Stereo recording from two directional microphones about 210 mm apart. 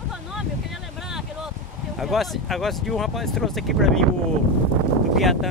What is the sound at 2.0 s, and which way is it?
Speech, centre (ahead or behind).